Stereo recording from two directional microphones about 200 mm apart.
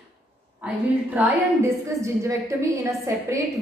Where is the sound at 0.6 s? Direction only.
5° right (ahead or behind).